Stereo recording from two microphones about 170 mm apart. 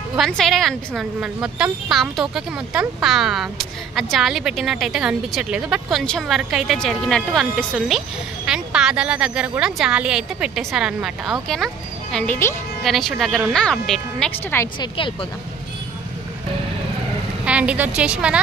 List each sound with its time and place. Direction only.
0.2 s a woman's voice: centre (ahead or behind)
12.8 s a woman's voice: centre (ahead or behind)
14.8 s speech: 30° left (ahead or behind)
17.5 s a woman's voice: 5° right (ahead or behind)